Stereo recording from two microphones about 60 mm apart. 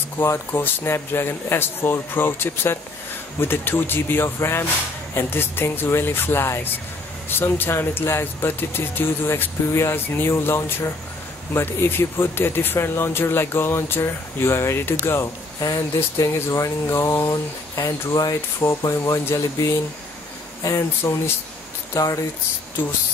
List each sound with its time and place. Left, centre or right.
0.2 s speech: left
15.6 s speech: left
21.0 s speech: left